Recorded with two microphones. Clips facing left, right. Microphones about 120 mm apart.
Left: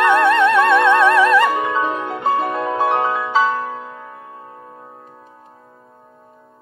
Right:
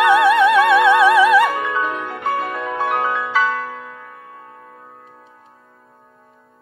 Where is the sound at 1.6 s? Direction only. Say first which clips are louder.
Left 2 dB; 25° left (ahead or behind).